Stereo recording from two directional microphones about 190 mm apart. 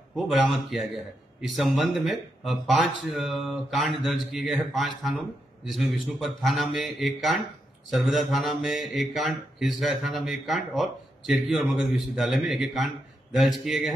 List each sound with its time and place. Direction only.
0.1 s speech: centre (ahead or behind)